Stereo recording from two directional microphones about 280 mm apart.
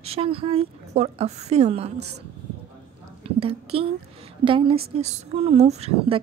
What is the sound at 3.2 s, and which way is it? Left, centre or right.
A woman's voice, centre.